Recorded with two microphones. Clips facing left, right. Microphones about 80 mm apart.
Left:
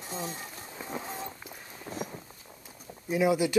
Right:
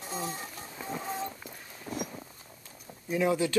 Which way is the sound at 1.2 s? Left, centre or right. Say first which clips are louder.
Right 3 dB; centre.